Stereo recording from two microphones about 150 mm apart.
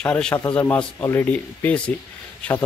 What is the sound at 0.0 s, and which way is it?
Speech, 5° left (ahead or behind).